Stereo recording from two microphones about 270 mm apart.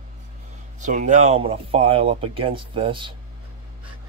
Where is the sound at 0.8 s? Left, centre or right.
Right.